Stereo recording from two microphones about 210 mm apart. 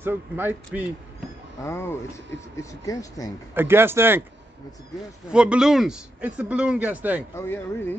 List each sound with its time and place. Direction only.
0.0 s speech: 10° right (ahead or behind)
1.6 s speech: 10° left (ahead or behind)
3.5 s speech: 10° right (ahead or behind)
5.3 s speech: 5° right (ahead or behind)
7.3 s speech: 10° left (ahead or behind)